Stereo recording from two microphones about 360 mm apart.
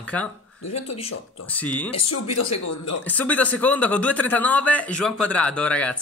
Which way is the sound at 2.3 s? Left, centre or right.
Left.